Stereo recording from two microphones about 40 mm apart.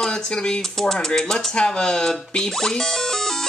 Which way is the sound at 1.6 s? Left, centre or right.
Centre.